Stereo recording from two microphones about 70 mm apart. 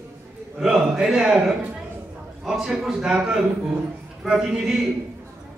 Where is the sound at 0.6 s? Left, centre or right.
Centre.